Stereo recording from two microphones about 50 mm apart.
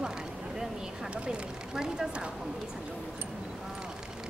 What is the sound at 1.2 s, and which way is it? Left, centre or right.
Speech, centre.